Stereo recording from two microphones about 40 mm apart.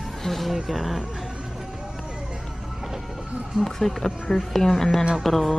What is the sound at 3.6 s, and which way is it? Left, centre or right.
Speech, centre.